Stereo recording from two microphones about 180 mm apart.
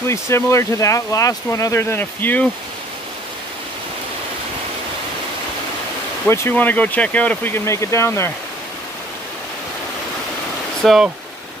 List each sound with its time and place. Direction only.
0.0 s speech: 15° left (ahead or behind)
6.2 s speech: 15° left (ahead or behind)
10.8 s speech: centre (ahead or behind)